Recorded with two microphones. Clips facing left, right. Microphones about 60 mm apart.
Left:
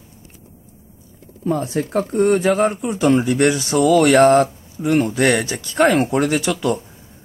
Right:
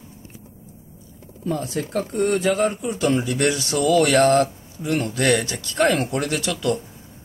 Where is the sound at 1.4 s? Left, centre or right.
Left.